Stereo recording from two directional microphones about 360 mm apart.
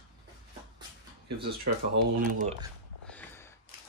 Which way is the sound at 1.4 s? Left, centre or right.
Right.